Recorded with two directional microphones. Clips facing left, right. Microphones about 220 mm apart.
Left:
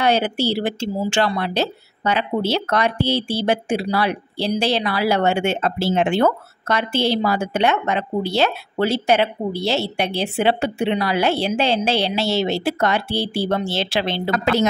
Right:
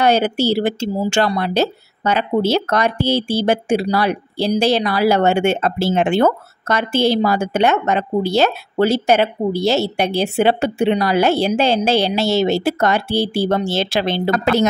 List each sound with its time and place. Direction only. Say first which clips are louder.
0.0 s speech: right 3 dB; 45° right (ahead or behind)